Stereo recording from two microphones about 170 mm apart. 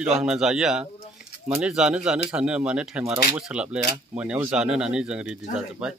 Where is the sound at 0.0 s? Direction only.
5° right (ahead or behind).